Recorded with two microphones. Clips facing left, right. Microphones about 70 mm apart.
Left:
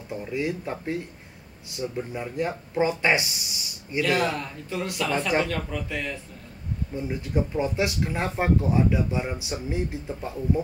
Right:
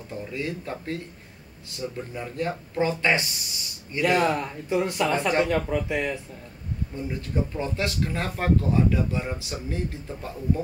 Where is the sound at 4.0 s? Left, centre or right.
Right.